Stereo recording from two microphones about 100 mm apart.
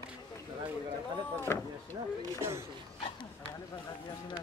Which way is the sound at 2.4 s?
30° right (ahead or behind).